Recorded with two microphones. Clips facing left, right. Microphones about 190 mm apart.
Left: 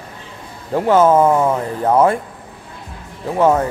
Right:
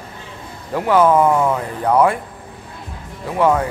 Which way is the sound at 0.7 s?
25° left (ahead or behind).